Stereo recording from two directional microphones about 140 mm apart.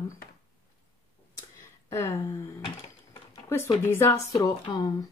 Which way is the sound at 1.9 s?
20° left (ahead or behind).